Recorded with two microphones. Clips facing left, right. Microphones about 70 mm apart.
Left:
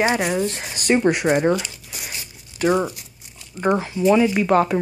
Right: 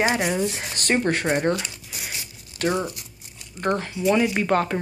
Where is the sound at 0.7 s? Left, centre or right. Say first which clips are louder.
Left 6 dB; centre.